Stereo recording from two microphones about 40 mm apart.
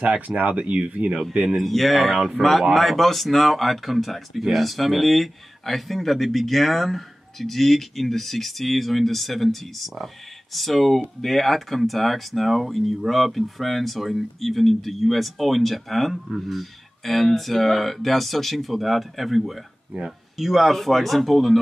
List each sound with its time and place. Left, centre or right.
0.4 s speech: right
1.6 s speech: centre